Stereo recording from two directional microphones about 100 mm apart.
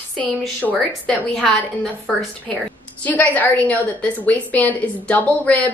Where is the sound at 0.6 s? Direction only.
15° left (ahead or behind).